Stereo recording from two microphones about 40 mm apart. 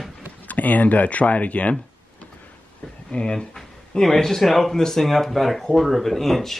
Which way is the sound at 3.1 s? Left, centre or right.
Left.